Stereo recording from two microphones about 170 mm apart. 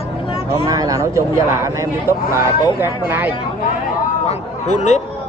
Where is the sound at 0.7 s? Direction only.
20° right (ahead or behind).